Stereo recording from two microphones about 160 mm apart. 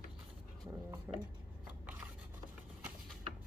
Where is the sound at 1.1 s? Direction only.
10° right (ahead or behind).